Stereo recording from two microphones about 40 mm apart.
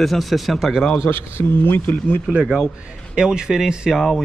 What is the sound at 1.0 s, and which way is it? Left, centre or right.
A man's voice, left.